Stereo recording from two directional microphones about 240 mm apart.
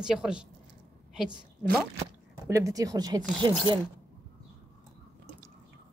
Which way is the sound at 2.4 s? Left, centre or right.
Centre.